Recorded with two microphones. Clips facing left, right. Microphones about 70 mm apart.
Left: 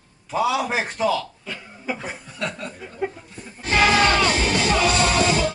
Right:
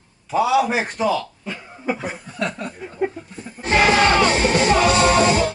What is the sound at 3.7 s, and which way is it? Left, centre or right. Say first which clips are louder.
Music: right 2 dB; right.